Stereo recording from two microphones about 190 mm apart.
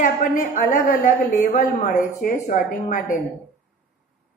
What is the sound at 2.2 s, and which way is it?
Speech, 45° left (ahead or behind).